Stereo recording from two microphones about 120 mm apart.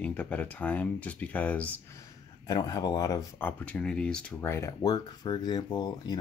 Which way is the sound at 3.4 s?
10° left (ahead or behind).